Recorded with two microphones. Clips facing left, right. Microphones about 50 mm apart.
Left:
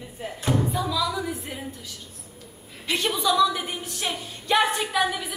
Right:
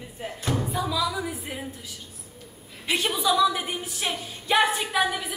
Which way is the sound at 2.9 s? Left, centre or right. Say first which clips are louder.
Even; centre.